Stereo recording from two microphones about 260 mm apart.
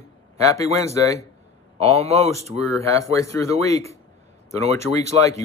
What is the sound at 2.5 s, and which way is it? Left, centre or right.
Speech, left.